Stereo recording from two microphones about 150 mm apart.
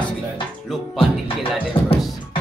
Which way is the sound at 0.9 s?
35° left (ahead or behind).